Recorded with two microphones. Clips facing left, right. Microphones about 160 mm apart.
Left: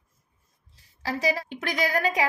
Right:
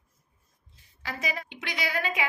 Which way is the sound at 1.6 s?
45° left (ahead or behind).